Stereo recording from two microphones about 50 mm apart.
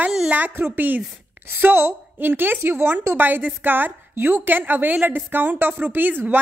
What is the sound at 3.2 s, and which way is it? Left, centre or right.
Speech, right.